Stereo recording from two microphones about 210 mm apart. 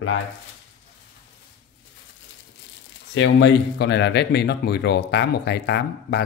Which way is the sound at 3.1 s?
60° left (ahead or behind).